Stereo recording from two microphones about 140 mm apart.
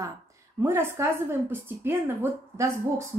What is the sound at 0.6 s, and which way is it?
Speech, 15° right (ahead or behind).